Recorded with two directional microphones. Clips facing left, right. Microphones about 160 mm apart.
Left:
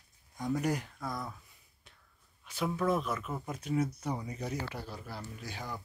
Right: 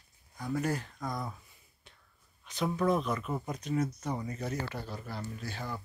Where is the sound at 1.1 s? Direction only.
Centre (ahead or behind).